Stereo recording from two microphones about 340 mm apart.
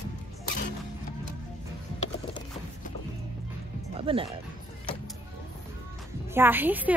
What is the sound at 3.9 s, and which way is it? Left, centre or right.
Music, centre.